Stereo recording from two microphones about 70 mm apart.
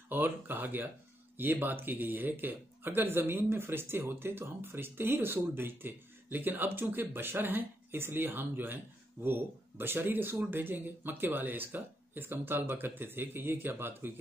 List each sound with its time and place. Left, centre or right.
0.1 s speech: right